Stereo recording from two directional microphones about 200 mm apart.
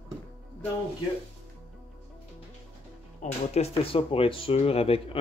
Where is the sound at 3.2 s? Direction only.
30° left (ahead or behind).